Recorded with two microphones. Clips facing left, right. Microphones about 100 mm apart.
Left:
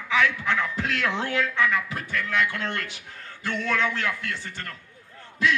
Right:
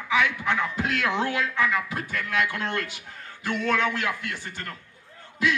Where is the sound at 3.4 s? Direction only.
15° right (ahead or behind).